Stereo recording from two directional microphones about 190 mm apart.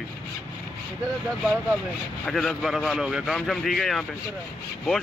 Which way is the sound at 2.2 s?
Centre (ahead or behind).